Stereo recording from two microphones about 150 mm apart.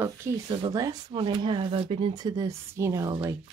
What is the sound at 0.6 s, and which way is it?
Speech, 30° right (ahead or behind).